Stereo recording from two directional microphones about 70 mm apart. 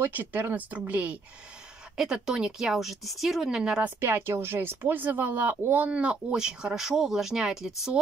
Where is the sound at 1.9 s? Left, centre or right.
Centre.